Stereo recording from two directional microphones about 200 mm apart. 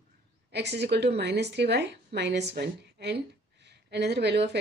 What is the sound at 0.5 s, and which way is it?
Speech, 55° right (ahead or behind).